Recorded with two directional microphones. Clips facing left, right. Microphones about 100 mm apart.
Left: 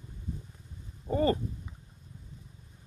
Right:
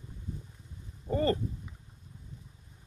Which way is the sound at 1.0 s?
15° left (ahead or behind).